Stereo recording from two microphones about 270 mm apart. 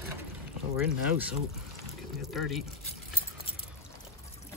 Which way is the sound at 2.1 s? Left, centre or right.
Centre.